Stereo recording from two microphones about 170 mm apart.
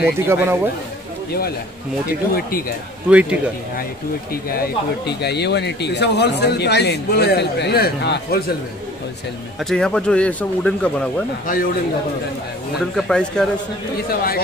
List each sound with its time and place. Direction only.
0.0 s a man's voice: 15° right (ahead or behind)
3.1 s a man's voice: 5° right (ahead or behind)
4.5 s speech: 70° left (ahead or behind)
9.6 s speech: 5° left (ahead or behind)
11.4 s a man's voice: 55° left (ahead or behind)
12.9 s speech: 5° left (ahead or behind)
13.9 s speech: 60° left (ahead or behind)